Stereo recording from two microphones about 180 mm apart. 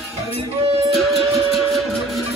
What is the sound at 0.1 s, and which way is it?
Music, 35° right (ahead or behind).